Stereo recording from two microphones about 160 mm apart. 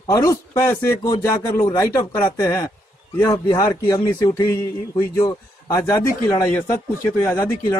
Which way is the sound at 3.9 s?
30° left (ahead or behind).